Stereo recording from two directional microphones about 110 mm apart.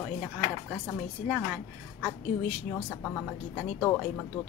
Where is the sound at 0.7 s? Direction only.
5° left (ahead or behind).